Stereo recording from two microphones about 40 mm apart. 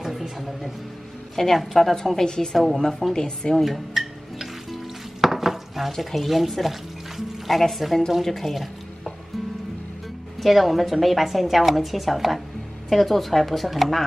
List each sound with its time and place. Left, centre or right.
0.0 s music: centre
1.3 s a woman's voice: centre
2.5 s a woman's voice: centre
3.2 s a woman's voice: centre
3.6 s music: centre
5.2 s a sound: centre
7.6 s a woman's voice: centre
10.4 s a woman's voice: centre